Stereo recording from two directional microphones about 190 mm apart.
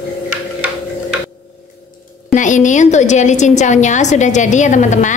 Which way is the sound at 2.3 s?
40° left (ahead or behind).